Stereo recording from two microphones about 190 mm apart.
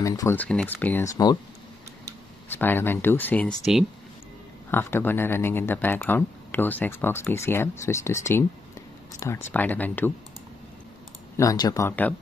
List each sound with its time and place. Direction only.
0.0 s speech: 15° left (ahead or behind)
1.1 s speech: 20° left (ahead or behind)
2.5 s speech: 10° left (ahead or behind)
11.3 s speech: 20° left (ahead or behind)